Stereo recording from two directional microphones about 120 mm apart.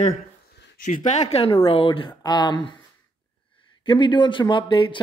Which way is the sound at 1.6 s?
50° left (ahead or behind).